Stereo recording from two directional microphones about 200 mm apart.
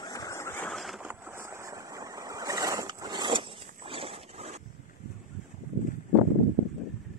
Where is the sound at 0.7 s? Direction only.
Centre (ahead or behind).